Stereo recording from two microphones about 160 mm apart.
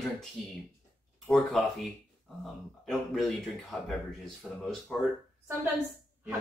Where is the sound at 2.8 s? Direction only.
Centre (ahead or behind).